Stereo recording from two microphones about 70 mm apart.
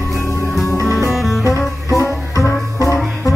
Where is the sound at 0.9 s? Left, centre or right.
Left.